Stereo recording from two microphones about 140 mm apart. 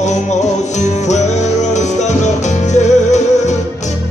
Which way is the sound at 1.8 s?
55° left (ahead or behind).